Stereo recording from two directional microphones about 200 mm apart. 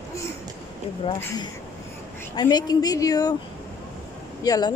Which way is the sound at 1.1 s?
10° left (ahead or behind).